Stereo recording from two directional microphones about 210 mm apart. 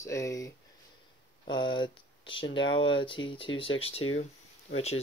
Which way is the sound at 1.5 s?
20° left (ahead or behind).